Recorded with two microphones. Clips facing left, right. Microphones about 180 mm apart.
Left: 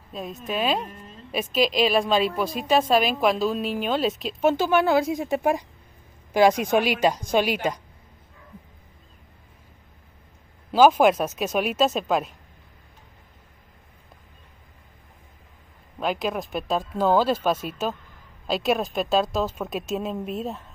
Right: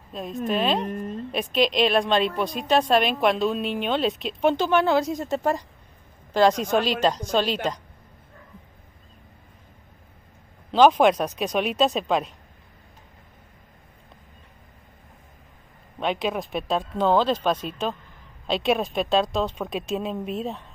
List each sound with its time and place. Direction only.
0.1 s a woman's voice: centre (ahead or behind)
0.8 s a woman's voice: 50° right (ahead or behind)
1.3 s a woman's voice: centre (ahead or behind)
10.7 s a woman's voice: 5° left (ahead or behind)
16.0 s a woman's voice: centre (ahead or behind)